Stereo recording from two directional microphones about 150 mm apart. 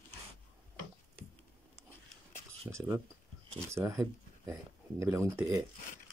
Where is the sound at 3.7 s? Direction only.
15° right (ahead or behind).